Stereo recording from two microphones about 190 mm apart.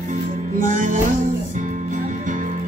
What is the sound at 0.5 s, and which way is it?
Music, 45° right (ahead or behind).